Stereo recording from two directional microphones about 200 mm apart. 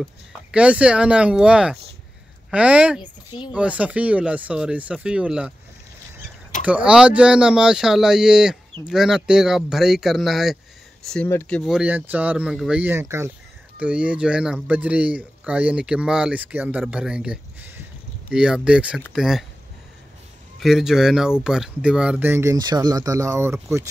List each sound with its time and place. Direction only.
0.0 s speech: 5° right (ahead or behind)
3.0 s speech: 20° left (ahead or behind)
3.5 s speech: 5° right (ahead or behind)
6.6 s speech: 5° right (ahead or behind)
20.6 s speech: centre (ahead or behind)